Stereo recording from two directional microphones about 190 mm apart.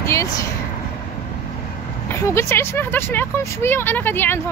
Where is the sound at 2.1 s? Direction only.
15° left (ahead or behind).